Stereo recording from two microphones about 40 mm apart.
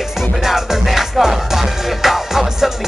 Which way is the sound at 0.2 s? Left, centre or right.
Centre.